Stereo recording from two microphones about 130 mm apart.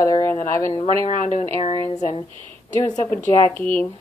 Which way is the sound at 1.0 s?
70° left (ahead or behind).